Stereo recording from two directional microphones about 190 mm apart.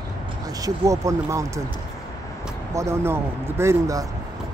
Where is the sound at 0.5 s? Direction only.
20° right (ahead or behind).